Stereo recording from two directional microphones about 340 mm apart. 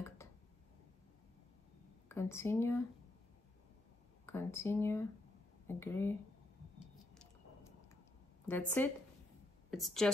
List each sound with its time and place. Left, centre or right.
0.2 s a sound: centre
2.0 s speech: centre
4.3 s speech: centre
8.5 s speech: centre